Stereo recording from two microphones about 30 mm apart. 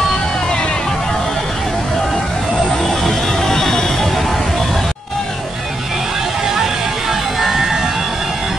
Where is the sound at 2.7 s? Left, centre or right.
Centre.